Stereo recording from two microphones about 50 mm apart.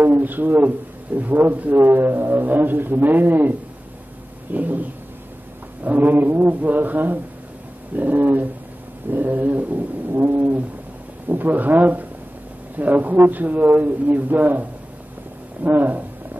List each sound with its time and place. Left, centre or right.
0.0 s a man's voice: right
5.9 s a man's voice: right